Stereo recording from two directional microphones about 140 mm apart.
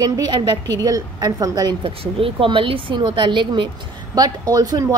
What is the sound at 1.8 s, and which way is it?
Speech, 40° right (ahead or behind).